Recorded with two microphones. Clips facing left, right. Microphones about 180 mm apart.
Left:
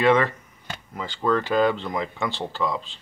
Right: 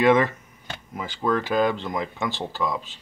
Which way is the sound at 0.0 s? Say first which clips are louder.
Right 1 dB; 10° right (ahead or behind).